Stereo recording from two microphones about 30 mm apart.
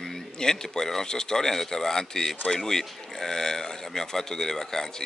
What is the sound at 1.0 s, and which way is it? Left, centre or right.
Speech, left.